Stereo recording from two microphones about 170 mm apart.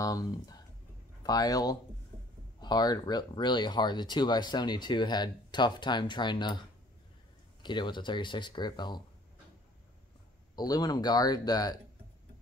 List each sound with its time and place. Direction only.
0.0 s speech: 20° left (ahead or behind)
7.6 s speech: 25° left (ahead or behind)
10.5 s speech: 25° left (ahead or behind)